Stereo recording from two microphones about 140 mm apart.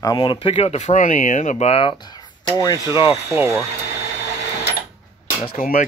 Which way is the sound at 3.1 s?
20° right (ahead or behind).